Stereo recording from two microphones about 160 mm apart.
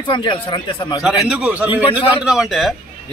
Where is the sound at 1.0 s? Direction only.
5° right (ahead or behind).